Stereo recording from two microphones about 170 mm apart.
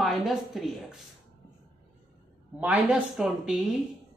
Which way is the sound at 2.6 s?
10° right (ahead or behind).